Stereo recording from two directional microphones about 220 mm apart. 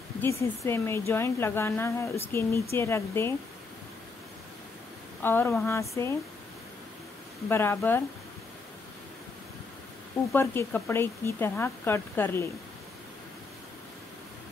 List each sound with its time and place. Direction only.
0.2 s a woman's voice: 10° left (ahead or behind)
5.2 s a woman's voice: 10° left (ahead or behind)
7.4 s a woman's voice: 10° left (ahead or behind)
10.3 s a woman's voice: 10° left (ahead or behind)